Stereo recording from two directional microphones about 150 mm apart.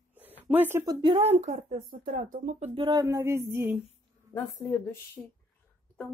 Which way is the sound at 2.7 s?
35° right (ahead or behind).